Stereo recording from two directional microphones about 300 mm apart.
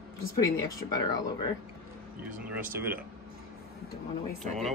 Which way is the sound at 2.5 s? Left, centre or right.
Centre.